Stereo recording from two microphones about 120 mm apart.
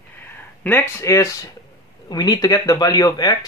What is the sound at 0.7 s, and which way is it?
Speech, 20° left (ahead or behind).